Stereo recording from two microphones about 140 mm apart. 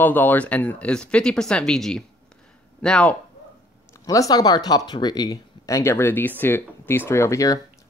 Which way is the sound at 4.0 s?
25° left (ahead or behind).